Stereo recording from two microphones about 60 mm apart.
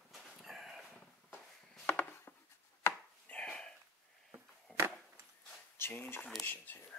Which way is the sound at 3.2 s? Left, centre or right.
Centre.